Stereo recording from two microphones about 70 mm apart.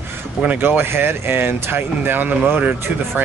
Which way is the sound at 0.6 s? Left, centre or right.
Right.